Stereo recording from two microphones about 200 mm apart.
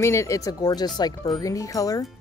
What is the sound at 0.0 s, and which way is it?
Speech, 15° left (ahead or behind).